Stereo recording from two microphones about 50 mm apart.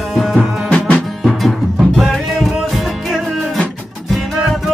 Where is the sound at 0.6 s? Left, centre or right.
Centre.